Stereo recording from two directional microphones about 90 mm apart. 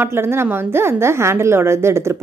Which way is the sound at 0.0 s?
25° right (ahead or behind).